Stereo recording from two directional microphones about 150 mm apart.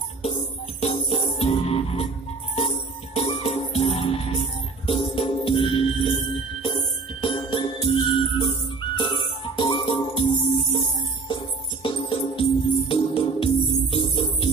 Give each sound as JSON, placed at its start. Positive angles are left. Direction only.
{"t": 0.2, "sound": "music", "side_deg": 40}
{"t": 3.2, "sound": "music", "side_deg": 40}
{"t": 11.8, "sound": "music", "side_deg": 35}